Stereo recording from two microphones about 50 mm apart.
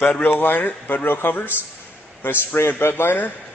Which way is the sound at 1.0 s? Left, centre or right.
Left.